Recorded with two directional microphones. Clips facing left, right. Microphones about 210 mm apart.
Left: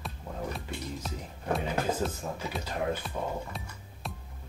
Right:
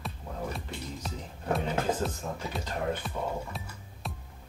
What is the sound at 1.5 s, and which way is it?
Speech, centre (ahead or behind).